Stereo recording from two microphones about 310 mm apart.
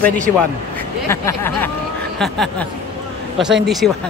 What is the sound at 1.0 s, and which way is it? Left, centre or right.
Speech, centre.